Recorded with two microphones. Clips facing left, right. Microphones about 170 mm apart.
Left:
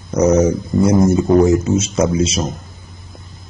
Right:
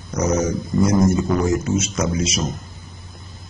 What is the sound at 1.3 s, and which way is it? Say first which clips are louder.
Speech: left 7 dB; 30° left (ahead or behind).